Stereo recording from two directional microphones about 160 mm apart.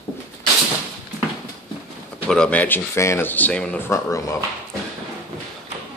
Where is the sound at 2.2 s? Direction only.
5° left (ahead or behind).